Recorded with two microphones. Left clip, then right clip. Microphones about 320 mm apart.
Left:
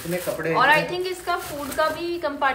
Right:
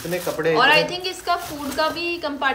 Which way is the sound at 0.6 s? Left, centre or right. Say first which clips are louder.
Right 1 dB; centre.